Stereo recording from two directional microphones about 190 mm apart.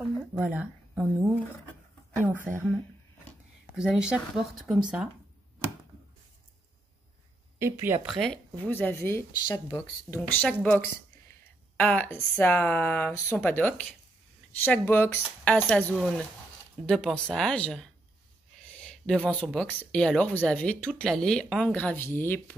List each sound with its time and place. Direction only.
0.3 s a woman's voice: 10° right (ahead or behind)
2.3 s a woman's voice: 10° right (ahead or behind)
3.7 s speech: 5° right (ahead or behind)
7.5 s speech: 15° right (ahead or behind)
8.1 s speech: 5° left (ahead or behind)